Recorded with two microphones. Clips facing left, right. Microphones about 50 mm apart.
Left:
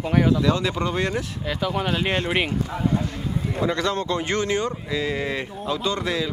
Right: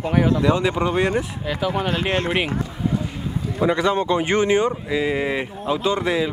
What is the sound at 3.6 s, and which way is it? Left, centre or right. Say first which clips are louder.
Speech: right 6 dB; centre.